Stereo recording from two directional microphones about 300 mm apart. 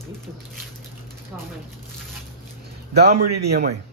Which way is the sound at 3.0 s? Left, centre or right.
Right.